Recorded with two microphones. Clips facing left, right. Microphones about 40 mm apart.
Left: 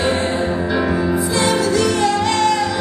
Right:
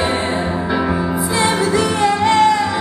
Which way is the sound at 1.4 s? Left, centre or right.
Right.